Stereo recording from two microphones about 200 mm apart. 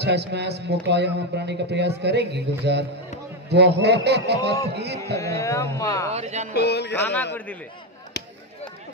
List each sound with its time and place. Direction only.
0.0 s speech: 55° right (ahead or behind)
5.1 s speech: 15° left (ahead or behind)
6.1 s speech: 35° right (ahead or behind)
6.5 s music: 55° left (ahead or behind)